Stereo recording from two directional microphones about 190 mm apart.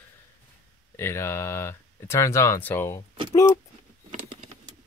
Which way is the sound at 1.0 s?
15° left (ahead or behind).